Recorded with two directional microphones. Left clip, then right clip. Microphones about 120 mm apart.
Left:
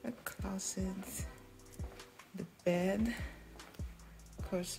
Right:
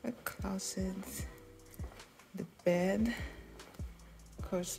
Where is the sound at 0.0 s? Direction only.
15° right (ahead or behind).